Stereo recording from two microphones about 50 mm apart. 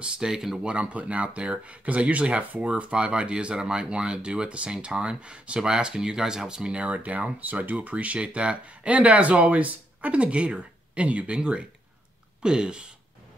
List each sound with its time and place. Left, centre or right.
0.0 s speech: centre
0.7 s speech: right